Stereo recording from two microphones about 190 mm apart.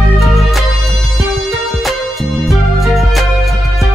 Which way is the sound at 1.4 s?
Centre (ahead or behind).